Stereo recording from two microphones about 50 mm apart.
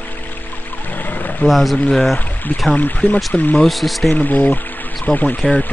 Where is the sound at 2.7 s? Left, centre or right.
Left.